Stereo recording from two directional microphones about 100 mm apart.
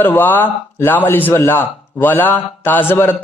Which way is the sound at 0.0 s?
20° left (ahead or behind).